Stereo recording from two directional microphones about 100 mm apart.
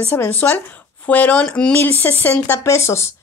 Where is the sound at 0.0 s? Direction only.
20° left (ahead or behind).